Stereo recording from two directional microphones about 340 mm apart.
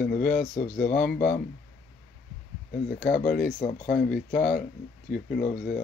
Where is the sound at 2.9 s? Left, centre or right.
Left.